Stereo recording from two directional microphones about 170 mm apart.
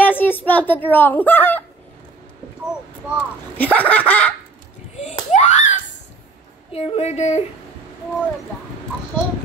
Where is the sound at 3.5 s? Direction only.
10° left (ahead or behind).